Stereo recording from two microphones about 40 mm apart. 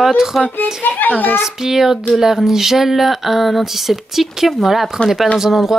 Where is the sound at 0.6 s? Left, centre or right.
Left.